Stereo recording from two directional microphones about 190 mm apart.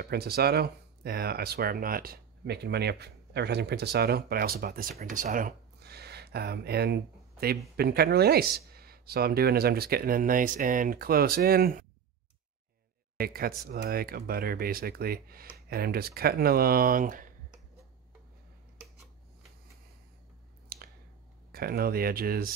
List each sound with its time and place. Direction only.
0.0 s speech: 55° right (ahead or behind)
13.2 s speech: 50° right (ahead or behind)
20.6 s a sound: 50° right (ahead or behind)
21.5 s speech: 55° right (ahead or behind)